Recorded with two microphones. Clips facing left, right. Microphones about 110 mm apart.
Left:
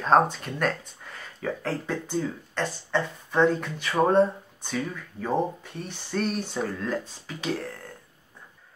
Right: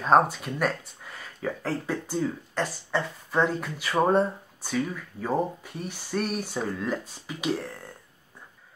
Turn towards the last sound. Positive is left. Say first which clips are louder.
# right 1 dB
turn(degrees=-10)  # may be behind; listen again after turning